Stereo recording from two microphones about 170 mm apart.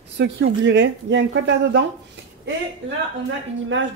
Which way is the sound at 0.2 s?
90° right.